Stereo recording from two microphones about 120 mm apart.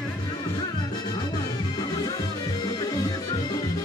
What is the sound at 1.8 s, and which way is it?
Music, 35° left (ahead or behind).